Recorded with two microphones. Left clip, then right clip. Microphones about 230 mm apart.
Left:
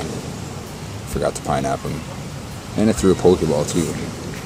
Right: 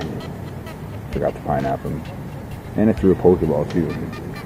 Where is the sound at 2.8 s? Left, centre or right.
Centre.